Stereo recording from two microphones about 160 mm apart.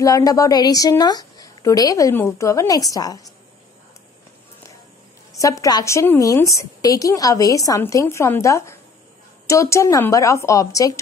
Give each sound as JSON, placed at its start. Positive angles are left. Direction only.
{"t": 0.0, "sound": "a woman's voice", "side_deg": 20}
{"t": 5.4, "sound": "a woman's voice", "side_deg": 20}